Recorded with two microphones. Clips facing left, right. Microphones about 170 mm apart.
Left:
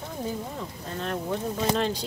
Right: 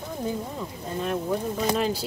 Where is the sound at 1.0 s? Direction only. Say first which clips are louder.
Right 3 dB; 5° right (ahead or behind).